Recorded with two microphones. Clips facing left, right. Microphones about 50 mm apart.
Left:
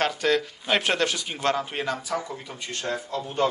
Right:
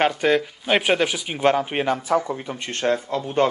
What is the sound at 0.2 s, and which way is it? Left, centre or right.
Speech, centre.